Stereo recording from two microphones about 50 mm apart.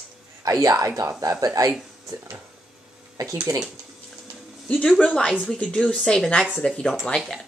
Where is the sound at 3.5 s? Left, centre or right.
Right.